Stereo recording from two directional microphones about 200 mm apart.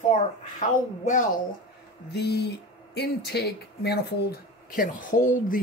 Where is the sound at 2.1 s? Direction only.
55° left (ahead or behind).